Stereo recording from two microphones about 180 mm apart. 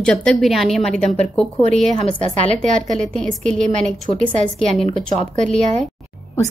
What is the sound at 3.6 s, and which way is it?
Speech, 45° right (ahead or behind).